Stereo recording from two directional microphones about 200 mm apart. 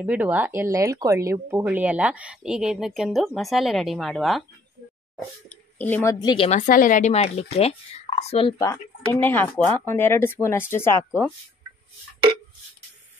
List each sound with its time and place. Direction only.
0.0 s speech: 10° right (ahead or behind)
5.8 s speech: 10° left (ahead or behind)
6.1 s speech: 25° left (ahead or behind)
6.6 s speech: 45° left (ahead or behind)
9.1 s speech: 10° left (ahead or behind)